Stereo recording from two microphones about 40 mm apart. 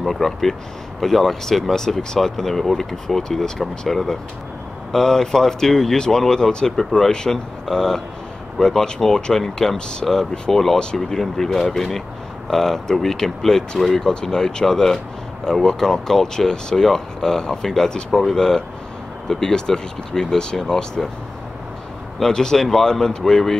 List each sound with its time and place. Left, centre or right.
0.0 s speech: centre
9.8 s speech: left
10.5 s speech: centre
22.2 s speech: centre